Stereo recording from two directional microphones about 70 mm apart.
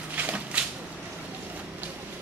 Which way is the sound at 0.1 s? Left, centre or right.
Right.